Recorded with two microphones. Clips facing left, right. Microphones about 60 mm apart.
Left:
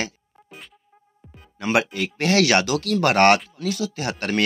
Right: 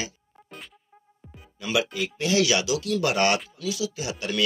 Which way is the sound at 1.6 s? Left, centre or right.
Left.